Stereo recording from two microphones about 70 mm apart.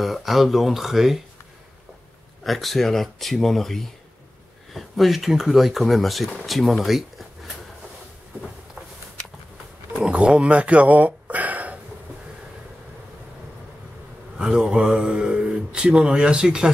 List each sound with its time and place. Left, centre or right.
0.0 s speech: centre
2.4 s speech: centre
9.9 s speech: centre
14.3 s speech: centre